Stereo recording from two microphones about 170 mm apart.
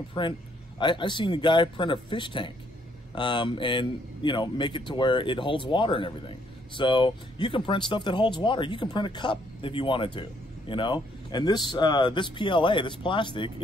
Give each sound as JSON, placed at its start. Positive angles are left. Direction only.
{"t": 0.2, "sound": "a man's voice", "side_deg": 30}